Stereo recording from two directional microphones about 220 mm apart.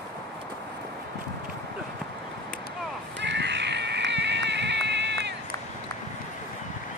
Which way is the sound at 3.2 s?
50° right (ahead or behind).